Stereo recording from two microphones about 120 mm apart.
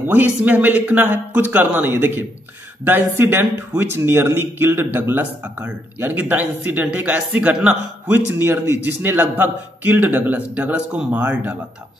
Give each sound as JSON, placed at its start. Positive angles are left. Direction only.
{"t": 0.0, "sound": "a man's voice", "side_deg": -15}